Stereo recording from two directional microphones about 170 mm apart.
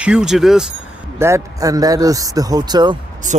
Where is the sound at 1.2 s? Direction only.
15° right (ahead or behind).